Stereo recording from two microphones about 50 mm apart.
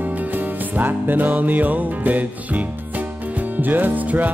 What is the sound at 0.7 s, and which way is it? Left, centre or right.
Music, right.